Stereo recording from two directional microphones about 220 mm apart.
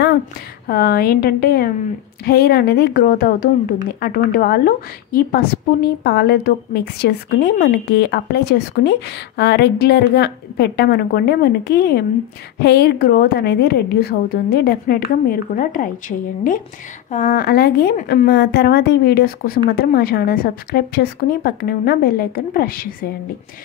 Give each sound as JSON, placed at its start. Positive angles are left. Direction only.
{"t": 0.7, "sound": "a woman's voice", "side_deg": 45}
{"t": 17.1, "sound": "a woman's voice", "side_deg": 40}